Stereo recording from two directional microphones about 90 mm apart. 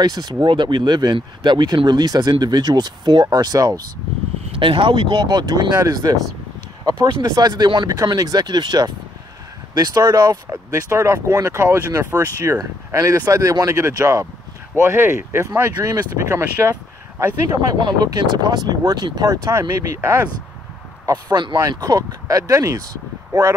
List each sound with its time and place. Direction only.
0.0 s speech: 50° right (ahead or behind)
4.5 s speech: 75° right (ahead or behind)
5.2 s speech: 50° right (ahead or behind)
6.8 s a sound: 45° right (ahead or behind)
7.2 s speech: 50° right (ahead or behind); by 16.7 s 30° right (ahead or behind)
17.6 s speech: 50° right (ahead or behind)
20.0 s speech: 25° right (ahead or behind)
21.0 s speech: 45° right (ahead or behind)
21.5 s speech: 40° right (ahead or behind)